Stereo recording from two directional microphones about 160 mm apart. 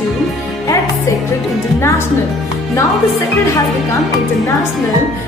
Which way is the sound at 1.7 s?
15° left (ahead or behind).